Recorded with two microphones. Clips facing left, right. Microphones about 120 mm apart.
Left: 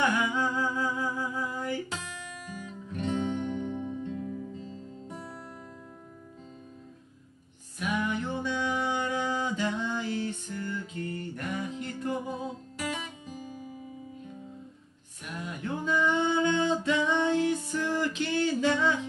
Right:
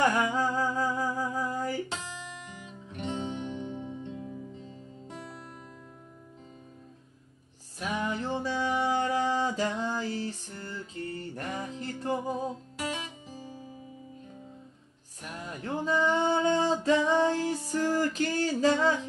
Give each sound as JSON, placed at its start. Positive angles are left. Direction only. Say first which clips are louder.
{"t": 0.0, "sound": "humming", "louder": "right 2 dB", "side_deg": -40}
{"t": 1.9, "sound": "music", "louder": "even", "side_deg": -25}
{"t": 7.8, "sound": "a sound", "louder": "left 1 dB", "side_deg": -30}
{"t": 15.2, "sound": "music", "louder": "left 1 dB", "side_deg": -35}